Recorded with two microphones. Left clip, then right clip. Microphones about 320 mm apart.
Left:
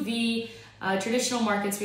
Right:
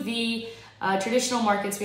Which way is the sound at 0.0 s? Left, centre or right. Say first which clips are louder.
Right 1 dB; centre.